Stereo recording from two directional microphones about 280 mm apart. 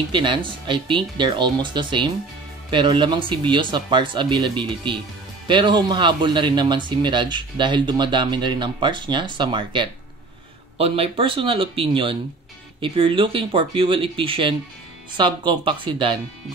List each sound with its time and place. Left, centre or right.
0.1 s speech: centre